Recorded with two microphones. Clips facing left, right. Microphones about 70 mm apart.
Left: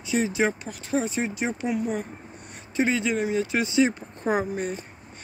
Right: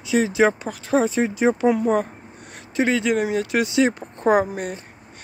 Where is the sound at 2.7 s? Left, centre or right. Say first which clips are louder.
Right 4 dB; right.